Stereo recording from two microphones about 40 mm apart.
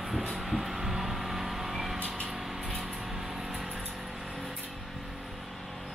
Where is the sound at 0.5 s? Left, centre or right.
Centre.